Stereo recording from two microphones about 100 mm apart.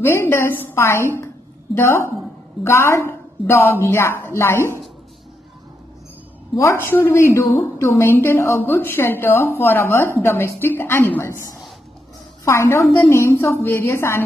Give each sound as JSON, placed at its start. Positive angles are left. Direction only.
{"t": 0.0, "sound": "a woman's voice", "side_deg": 25}
{"t": 6.5, "sound": "a woman's voice", "side_deg": 30}